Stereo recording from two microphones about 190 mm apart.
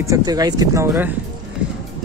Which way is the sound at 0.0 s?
20° right (ahead or behind).